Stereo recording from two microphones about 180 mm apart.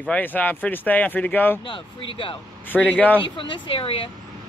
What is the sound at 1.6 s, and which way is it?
Speech, 25° left (ahead or behind).